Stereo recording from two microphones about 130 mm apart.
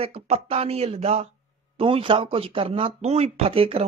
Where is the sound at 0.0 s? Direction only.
50° right (ahead or behind).